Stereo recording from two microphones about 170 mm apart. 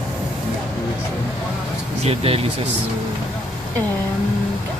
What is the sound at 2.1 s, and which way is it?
Speech, 35° right (ahead or behind).